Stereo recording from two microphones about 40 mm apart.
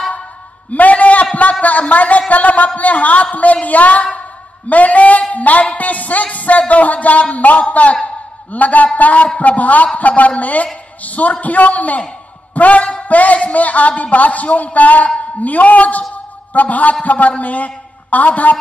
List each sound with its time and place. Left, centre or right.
0.7 s a man's voice: left
5.8 s music: left
6.7 s a man's voice: left